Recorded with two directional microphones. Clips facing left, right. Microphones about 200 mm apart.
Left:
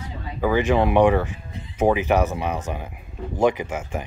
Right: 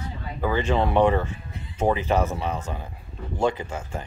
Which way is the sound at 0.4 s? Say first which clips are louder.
Left 4 dB; 10° left (ahead or behind).